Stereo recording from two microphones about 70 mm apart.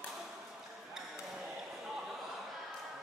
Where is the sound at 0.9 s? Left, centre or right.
Centre.